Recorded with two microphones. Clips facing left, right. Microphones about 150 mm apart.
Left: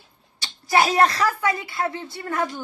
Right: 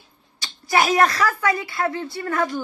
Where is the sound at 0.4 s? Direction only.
30° left (ahead or behind).